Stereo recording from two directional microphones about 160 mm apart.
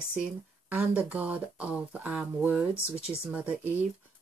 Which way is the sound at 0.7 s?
10° right (ahead or behind).